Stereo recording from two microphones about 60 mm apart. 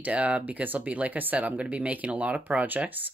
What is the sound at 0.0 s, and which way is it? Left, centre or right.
Speech, right.